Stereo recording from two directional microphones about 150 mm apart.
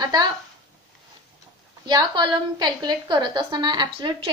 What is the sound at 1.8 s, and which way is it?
A woman's voice, 25° right (ahead or behind).